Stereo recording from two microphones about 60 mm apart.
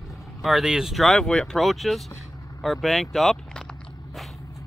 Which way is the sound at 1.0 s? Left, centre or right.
Centre.